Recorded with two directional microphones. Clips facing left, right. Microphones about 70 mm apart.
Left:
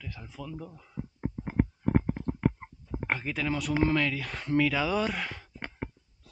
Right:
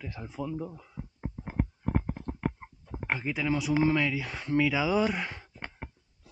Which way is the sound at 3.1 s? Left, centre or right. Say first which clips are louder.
Right 2 dB; centre.